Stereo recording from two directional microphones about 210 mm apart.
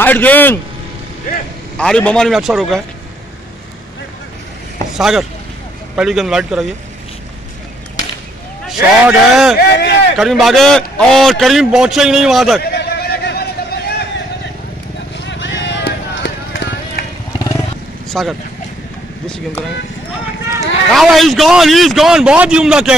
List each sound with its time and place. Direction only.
0.0 s a man's voice: 10° left (ahead or behind)
1.8 s a man's voice: 5° left (ahead or behind)
4.9 s a man's voice: centre (ahead or behind)
8.6 s a man's voice: centre (ahead or behind)
9.6 s speech: 50° left (ahead or behind)
10.1 s a man's voice: centre (ahead or behind)
12.6 s a sound: 50° left (ahead or behind)
15.1 s vehicle: 60° left (ahead or behind)
18.1 s a man's voice: centre (ahead or behind)
20.9 s a man's voice: centre (ahead or behind)